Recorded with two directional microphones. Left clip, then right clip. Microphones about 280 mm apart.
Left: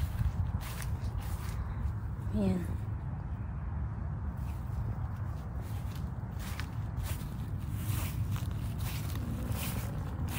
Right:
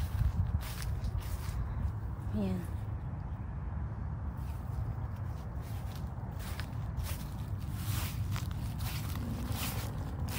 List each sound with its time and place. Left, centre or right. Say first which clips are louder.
2.3 s speech: left 4 dB; centre
7.9 s zipper: right 1 dB; centre
8.8 s boat: right 1 dB; centre